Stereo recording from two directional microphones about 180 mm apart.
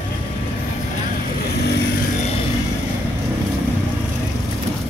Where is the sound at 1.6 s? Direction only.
60° left (ahead or behind).